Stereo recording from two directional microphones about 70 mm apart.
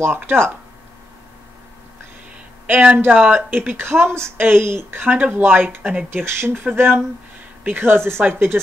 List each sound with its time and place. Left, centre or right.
0.3 s speech: right
2.6 s speech: centre; by 5.0 s right
5.0 s speech: right
6.0 s speech: right